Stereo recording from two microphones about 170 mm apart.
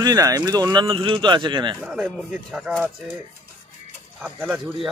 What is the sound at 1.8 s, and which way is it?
Speech, 5° right (ahead or behind).